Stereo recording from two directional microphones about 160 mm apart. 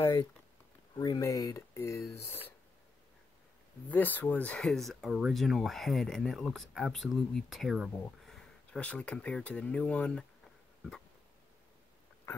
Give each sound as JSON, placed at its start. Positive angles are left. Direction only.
{"t": 0.0, "sound": "speech", "side_deg": 25}
{"t": 3.9, "sound": "speech", "side_deg": 10}